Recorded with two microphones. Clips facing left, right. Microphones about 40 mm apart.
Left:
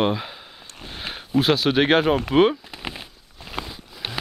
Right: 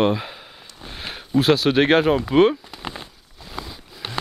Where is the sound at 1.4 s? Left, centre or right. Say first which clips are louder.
Right 3 dB; left.